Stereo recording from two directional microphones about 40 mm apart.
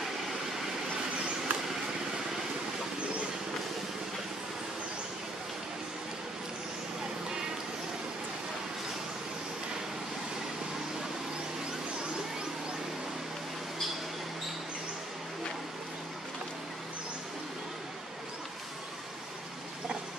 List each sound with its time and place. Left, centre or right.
1.5 s vehicle: right